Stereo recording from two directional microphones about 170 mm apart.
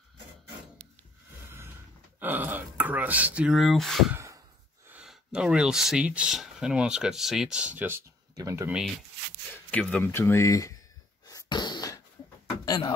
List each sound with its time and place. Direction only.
2.1 s speech: 10° right (ahead or behind)
4.1 s sigh: 15° right (ahead or behind)
4.8 s speech: 5° right (ahead or behind)
8.6 s speech: 5° right (ahead or behind)
9.7 s speech: 5° left (ahead or behind)
11.2 s a sound: 20° left (ahead or behind)